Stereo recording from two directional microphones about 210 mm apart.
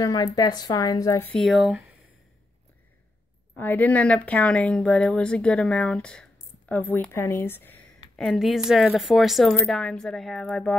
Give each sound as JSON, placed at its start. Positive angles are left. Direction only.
{"t": 0.0, "sound": "a woman's voice", "side_deg": 15}
{"t": 1.3, "sound": "speech", "side_deg": 0}
{"t": 3.5, "sound": "speech", "side_deg": 10}